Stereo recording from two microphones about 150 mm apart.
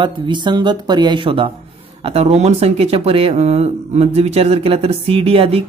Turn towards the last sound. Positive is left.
turn(degrees=-40)  # may be behind; listen again after turning